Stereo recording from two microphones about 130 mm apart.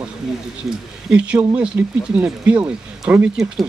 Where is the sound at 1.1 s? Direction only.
10° right (ahead or behind).